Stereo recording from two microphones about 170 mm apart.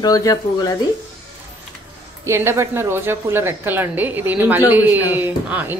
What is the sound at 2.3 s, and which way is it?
Speech, 15° right (ahead or behind).